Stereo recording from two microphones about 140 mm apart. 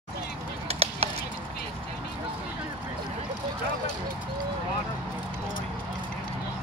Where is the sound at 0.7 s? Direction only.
45° right (ahead or behind).